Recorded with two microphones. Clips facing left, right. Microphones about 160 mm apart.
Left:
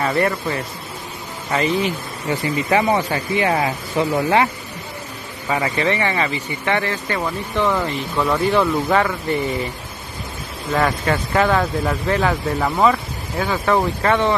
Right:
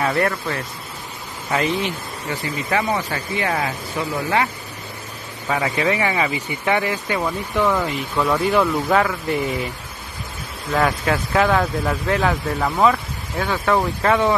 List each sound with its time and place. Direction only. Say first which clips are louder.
0.0 s speech: left 1 dB; centre (ahead or behind)
2.7 s speech: left 4 dB; 20° left (ahead or behind)
5.5 s speech: left 1 dB; centre (ahead or behind)
10.7 s speech: even; centre (ahead or behind)